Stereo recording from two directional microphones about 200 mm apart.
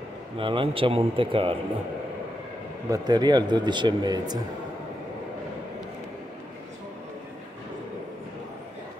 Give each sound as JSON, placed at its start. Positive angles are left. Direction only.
{"t": 0.4, "sound": "speech", "side_deg": -25}
{"t": 2.9, "sound": "speech", "side_deg": -20}